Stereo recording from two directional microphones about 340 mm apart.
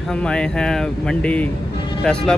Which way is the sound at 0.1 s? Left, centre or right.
Centre.